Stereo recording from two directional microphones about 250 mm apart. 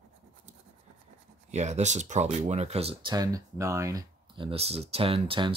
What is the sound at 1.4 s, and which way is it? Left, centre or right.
Speech, right.